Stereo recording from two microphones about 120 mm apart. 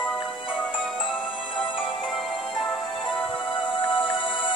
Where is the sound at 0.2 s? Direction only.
45° left (ahead or behind).